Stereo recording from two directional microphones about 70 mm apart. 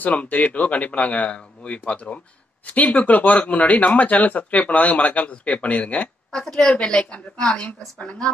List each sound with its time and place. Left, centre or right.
0.0 s speech: left
6.3 s a woman's voice: centre